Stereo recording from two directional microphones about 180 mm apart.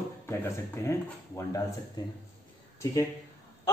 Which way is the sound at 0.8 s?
15° left (ahead or behind).